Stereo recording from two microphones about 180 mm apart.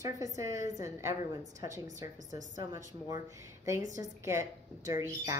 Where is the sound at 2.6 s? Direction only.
20° right (ahead or behind).